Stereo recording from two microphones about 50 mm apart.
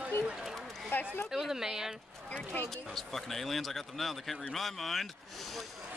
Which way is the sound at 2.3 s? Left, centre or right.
Left.